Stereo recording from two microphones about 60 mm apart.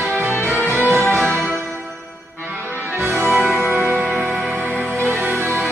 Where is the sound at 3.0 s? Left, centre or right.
Right.